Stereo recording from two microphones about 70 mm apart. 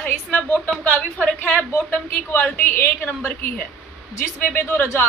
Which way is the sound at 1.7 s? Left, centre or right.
Left.